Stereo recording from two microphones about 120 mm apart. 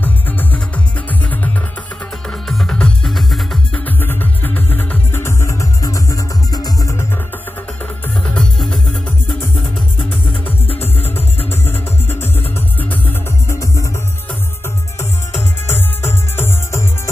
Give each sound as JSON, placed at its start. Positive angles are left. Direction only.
{"t": 0.0, "sound": "music", "side_deg": 15}
{"t": 2.2, "sound": "music", "side_deg": 5}
{"t": 3.8, "sound": "music", "side_deg": 15}
{"t": 8.4, "sound": "music", "side_deg": 5}
{"t": 10.7, "sound": "music", "side_deg": 55}
{"t": 11.3, "sound": "music", "side_deg": 20}
{"t": 13.5, "sound": "music", "side_deg": 25}
{"t": 15.6, "sound": "music", "side_deg": 20}